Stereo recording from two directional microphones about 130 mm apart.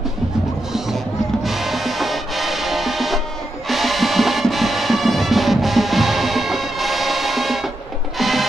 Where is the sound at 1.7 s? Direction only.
Centre (ahead or behind).